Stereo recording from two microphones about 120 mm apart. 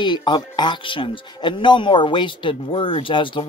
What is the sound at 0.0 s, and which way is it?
Speech, 40° left (ahead or behind).